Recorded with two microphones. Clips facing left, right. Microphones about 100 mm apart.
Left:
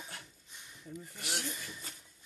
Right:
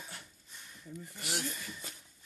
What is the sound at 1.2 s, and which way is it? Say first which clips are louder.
Speech: right 2 dB; centre (ahead or behind).